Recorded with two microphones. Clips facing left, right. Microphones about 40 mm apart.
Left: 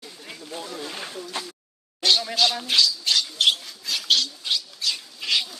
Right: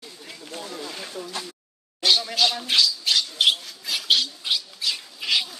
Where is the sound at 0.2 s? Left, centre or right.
Centre.